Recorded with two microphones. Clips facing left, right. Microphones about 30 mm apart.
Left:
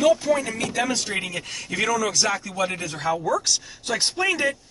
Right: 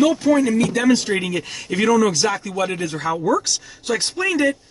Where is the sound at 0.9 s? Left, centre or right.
Centre.